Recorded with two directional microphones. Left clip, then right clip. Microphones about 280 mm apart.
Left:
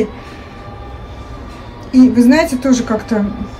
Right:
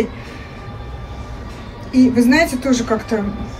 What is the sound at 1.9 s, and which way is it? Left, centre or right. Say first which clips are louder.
Speech: left 3 dB; centre.